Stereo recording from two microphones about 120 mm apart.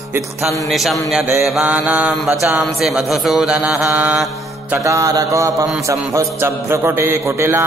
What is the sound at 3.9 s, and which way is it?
Mantra, 15° right (ahead or behind).